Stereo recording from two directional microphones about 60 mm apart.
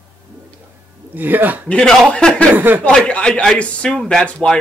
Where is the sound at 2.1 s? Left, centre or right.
Centre.